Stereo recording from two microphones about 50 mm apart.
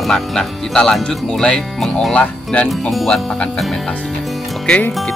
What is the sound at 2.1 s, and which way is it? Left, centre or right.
Speech, left.